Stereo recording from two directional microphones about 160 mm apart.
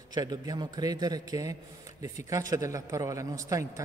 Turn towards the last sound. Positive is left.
turn(degrees=-20)  # may be behind; listen again after turning